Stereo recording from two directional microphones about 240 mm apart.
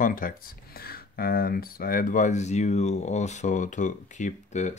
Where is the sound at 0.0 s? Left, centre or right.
Left.